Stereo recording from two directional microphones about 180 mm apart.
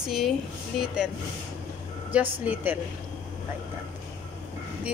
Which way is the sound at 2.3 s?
10° right (ahead or behind).